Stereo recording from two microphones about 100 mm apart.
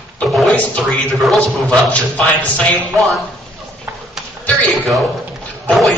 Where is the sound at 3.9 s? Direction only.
20° right (ahead or behind).